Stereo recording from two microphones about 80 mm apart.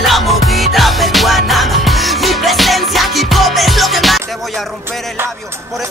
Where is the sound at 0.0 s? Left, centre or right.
Centre.